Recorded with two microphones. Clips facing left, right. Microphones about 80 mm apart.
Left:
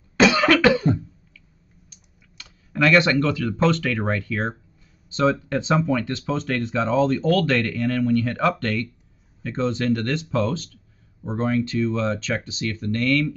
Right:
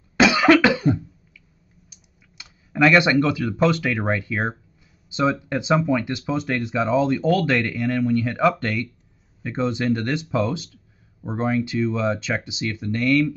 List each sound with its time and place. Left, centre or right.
0.2 s cough: centre
1.9 s speech: centre